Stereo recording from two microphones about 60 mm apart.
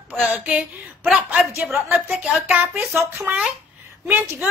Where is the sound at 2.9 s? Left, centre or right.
Right.